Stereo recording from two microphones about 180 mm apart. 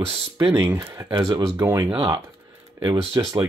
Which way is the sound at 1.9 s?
30° right (ahead or behind).